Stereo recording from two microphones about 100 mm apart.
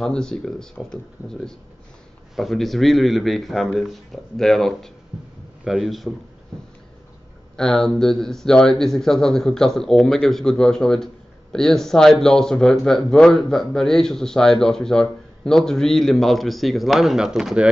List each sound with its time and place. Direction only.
0.0 s speech: 5° left (ahead or behind)
2.3 s speech: centre (ahead or behind)
7.5 s speech: 5° left (ahead or behind)